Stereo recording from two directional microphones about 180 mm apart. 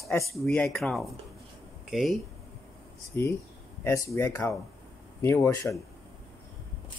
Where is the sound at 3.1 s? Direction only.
10° left (ahead or behind).